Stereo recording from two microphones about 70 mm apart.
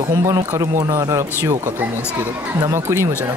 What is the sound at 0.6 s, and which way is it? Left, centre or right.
Speech, right.